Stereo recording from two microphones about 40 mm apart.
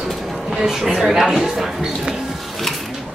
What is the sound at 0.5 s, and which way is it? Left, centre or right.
A woman's voice, centre.